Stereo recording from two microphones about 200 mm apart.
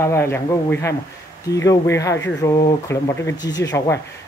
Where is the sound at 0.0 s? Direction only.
15° left (ahead or behind).